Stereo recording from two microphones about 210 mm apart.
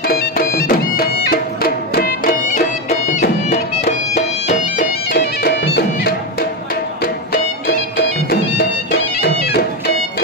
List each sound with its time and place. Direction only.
0.1 s music: 45° left (ahead or behind)
5.1 s music: 55° left (ahead or behind)
9.2 s music: 45° left (ahead or behind)